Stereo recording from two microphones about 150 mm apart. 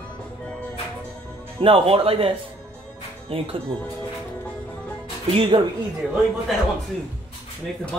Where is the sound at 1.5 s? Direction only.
40° right (ahead or behind).